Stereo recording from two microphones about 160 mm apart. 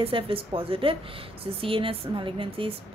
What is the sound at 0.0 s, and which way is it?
A woman's voice, 35° right (ahead or behind).